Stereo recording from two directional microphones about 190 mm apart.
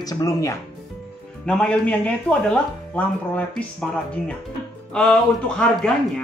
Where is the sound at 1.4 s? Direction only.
5° left (ahead or behind).